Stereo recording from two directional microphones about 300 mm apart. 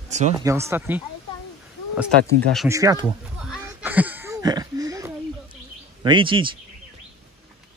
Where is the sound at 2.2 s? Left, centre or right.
Right.